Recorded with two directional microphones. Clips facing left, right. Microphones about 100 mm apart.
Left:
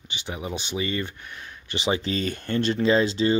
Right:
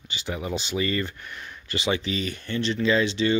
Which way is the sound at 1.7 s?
30° left (ahead or behind).